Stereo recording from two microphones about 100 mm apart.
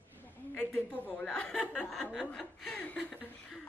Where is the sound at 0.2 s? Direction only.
20° left (ahead or behind).